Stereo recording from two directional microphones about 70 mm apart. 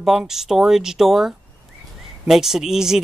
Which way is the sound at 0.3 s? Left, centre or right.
Centre.